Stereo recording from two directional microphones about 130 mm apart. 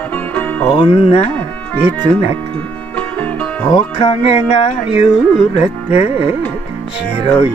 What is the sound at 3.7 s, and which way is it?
Music, 45° left (ahead or behind).